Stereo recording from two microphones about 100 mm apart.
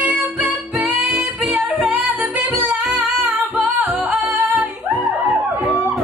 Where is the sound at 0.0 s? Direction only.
15° right (ahead or behind).